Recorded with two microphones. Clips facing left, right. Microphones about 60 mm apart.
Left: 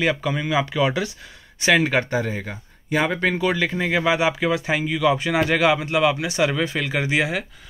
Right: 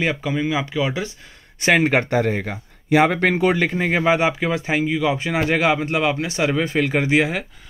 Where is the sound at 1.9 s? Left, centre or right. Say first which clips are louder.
Right 4 dB; right.